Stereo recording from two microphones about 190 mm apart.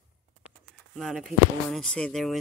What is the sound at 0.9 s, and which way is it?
Speech, centre (ahead or behind).